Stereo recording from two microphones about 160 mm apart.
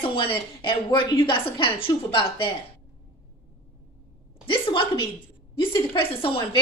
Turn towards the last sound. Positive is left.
turn(degrees=35)  # may be behind; listen again after turning